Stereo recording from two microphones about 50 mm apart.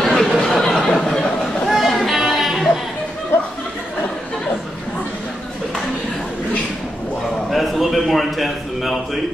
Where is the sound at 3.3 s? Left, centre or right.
Left.